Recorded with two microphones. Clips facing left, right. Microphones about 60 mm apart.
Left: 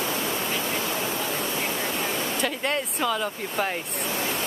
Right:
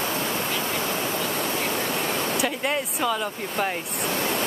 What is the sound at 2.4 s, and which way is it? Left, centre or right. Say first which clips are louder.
Speech: right 1 dB; centre.